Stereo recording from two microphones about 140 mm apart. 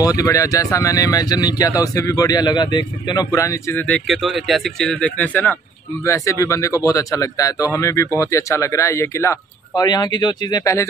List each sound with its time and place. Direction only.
0.0 s speech: 25° left (ahead or behind)
4.1 s speech: centre (ahead or behind); by 10.9 s 20° left (ahead or behind)